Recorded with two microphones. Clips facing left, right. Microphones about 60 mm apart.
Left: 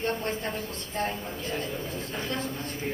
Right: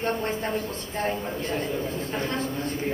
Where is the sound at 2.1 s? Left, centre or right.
Right.